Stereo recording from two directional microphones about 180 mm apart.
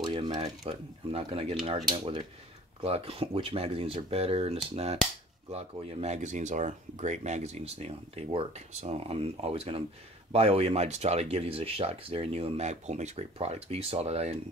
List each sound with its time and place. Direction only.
0.0 s a sound: 25° right (ahead or behind)
0.3 s speech: 35° right (ahead or behind)
2.8 s speech: 35° right (ahead or behind)